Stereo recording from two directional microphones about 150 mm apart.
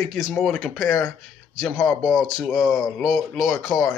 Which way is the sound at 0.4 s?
Centre (ahead or behind).